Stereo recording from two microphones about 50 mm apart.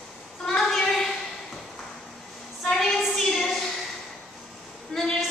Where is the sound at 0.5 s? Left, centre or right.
Centre.